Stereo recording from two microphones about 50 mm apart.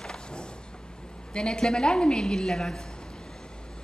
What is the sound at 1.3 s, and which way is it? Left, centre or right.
A woman's voice, centre.